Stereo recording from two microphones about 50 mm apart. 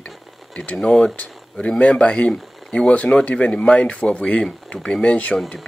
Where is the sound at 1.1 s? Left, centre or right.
Left.